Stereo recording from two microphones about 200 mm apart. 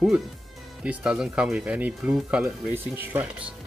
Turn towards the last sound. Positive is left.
turn(degrees=-5)  # may be behind; listen again after turning